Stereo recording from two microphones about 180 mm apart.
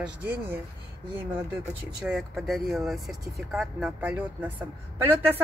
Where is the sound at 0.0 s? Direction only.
10° right (ahead or behind).